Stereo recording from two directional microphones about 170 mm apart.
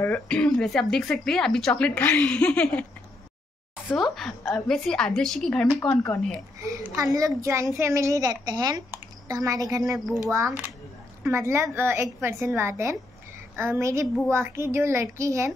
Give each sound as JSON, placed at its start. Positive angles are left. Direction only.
{"t": 0.0, "sound": "speech", "side_deg": 5}
{"t": 6.6, "sound": "a child's voice", "side_deg": -20}